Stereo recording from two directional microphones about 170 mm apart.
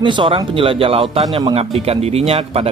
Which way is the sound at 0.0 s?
30° right (ahead or behind).